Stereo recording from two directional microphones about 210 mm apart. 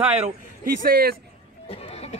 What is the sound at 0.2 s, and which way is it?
Speech, 45° right (ahead or behind).